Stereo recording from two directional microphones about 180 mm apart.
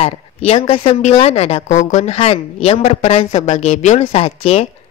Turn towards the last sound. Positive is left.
turn(degrees=35)  # may be behind; listen again after turning